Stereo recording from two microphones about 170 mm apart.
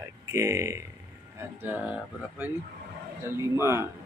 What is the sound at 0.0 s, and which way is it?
Speech, 15° right (ahead or behind).